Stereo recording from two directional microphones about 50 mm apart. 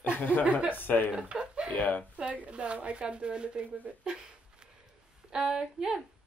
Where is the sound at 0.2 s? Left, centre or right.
Left.